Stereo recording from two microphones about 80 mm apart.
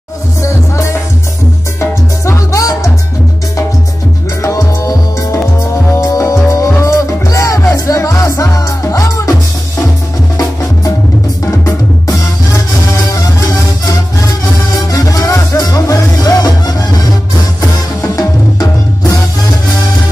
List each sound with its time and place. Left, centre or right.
0.4 s music: left
4.4 s music: left
13.1 s music: left
18.1 s music: left